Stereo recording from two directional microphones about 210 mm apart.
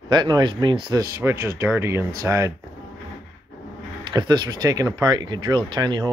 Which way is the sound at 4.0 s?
20° right (ahead or behind).